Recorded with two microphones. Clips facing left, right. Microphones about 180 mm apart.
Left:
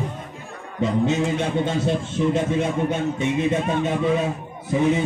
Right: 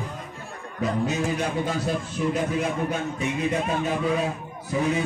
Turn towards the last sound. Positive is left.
turn(degrees=25)  # may be behind; listen again after turning